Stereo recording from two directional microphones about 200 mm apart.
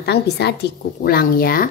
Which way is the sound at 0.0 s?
55° left (ahead or behind).